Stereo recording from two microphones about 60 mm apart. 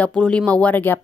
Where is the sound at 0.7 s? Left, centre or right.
Left.